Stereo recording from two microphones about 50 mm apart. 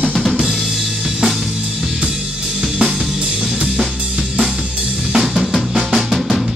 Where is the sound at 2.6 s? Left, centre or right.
Centre.